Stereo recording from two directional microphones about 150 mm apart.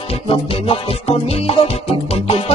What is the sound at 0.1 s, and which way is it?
Music, 40° left (ahead or behind).